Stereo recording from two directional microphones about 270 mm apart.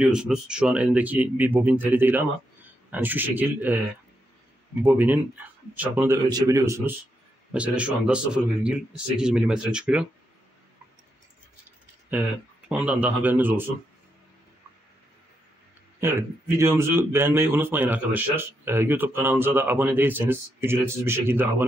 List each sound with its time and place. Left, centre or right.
0.0 s a man's voice: centre
4.8 s a man's voice: centre
12.6 s a man's voice: centre
16.0 s a man's voice: centre